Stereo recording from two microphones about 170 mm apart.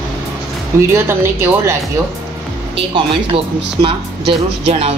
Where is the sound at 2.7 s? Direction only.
30° right (ahead or behind).